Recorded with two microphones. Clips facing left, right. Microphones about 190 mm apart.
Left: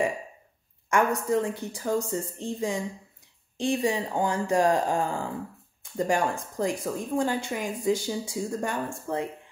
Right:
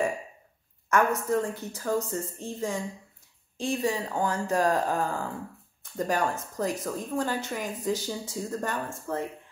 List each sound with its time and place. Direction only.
0.8 s speech: 15° left (ahead or behind)